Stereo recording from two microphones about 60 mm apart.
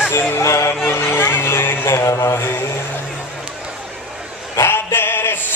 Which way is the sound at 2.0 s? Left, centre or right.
Left.